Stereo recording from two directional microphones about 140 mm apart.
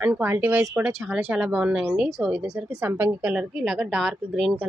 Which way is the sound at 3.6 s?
5° right (ahead or behind).